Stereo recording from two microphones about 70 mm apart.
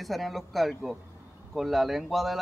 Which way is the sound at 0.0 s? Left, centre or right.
Centre.